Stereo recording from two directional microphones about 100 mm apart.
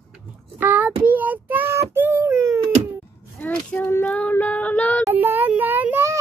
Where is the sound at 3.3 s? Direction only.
20° left (ahead or behind).